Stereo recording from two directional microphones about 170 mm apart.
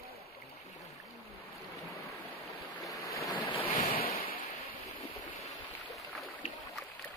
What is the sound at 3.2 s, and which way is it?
Waves, 25° left (ahead or behind).